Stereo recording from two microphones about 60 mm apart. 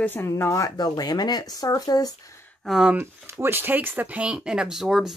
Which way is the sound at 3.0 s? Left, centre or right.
Right.